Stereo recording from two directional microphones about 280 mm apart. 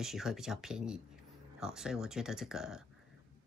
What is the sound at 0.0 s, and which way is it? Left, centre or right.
Speech, centre.